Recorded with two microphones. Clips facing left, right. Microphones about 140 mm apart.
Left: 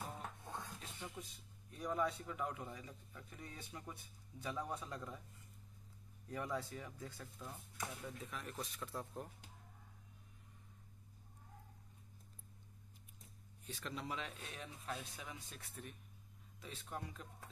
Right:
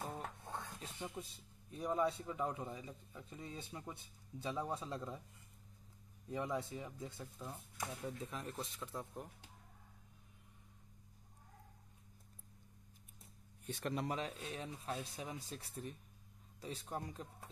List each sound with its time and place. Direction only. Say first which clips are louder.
0.0 s rub: right 3 dB; 35° right (ahead or behind)
1.1 s speech: right 4 dB; 30° right (ahead or behind)
6.2 s speech: right 3 dB; 20° right (ahead or behind)
13.7 s speech: right 6 dB; 55° right (ahead or behind); by 17.3 s 35° right (ahead or behind)